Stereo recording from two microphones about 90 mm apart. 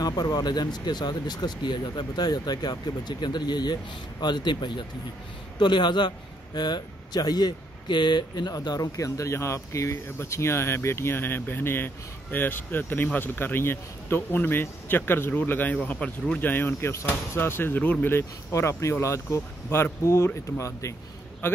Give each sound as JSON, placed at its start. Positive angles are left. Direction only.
{"t": 0.0, "sound": "speech", "side_deg": 50}